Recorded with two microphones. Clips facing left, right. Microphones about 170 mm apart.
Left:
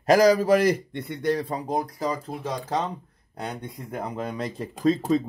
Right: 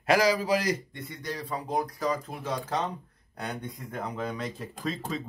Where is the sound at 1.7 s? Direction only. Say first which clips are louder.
Even; 30° left (ahead or behind).